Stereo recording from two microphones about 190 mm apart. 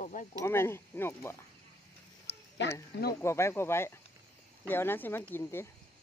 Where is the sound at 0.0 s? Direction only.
40° left (ahead or behind).